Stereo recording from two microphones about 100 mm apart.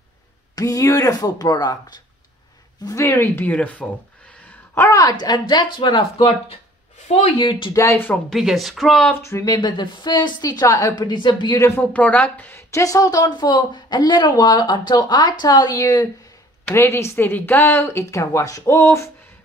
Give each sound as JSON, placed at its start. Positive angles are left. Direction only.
{"t": 0.6, "sound": "speech", "side_deg": 35}
{"t": 2.8, "sound": "speech", "side_deg": 30}
{"t": 4.7, "sound": "speech", "side_deg": 30}
{"t": 5.0, "sound": "a woman's voice", "side_deg": 45}
{"t": 7.3, "sound": "speech", "side_deg": 55}
{"t": 7.7, "sound": "speech", "side_deg": 30}
{"t": 8.3, "sound": "speech", "side_deg": 0}
{"t": 9.1, "sound": "speech", "side_deg": 30}
{"t": 9.5, "sound": "a woman's voice", "side_deg": 50}
{"t": 11.1, "sound": "a woman's voice", "side_deg": 50}
{"t": 11.6, "sound": "speech", "side_deg": 20}
{"t": 16.7, "sound": "speech", "side_deg": 25}